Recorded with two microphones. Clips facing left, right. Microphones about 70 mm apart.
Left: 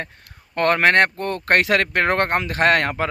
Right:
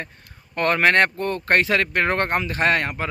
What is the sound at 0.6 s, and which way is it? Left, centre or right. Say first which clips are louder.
Speech: left 2 dB; left.